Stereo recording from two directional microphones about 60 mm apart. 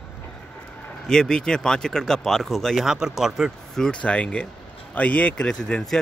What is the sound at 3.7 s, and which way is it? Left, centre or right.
Speech, centre.